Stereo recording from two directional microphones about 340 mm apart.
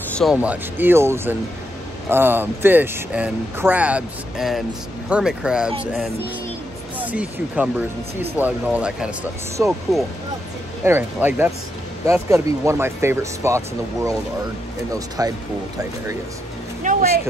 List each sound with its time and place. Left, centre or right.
0.1 s speech: centre
7.0 s speech: centre
16.8 s a sound: right